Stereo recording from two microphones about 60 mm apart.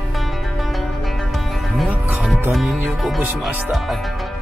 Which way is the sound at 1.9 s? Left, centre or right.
Right.